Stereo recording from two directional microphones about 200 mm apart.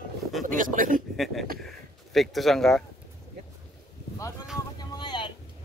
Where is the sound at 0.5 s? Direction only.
40° right (ahead or behind).